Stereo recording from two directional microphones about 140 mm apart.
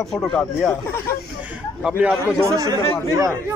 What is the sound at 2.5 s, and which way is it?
Speech, 25° right (ahead or behind).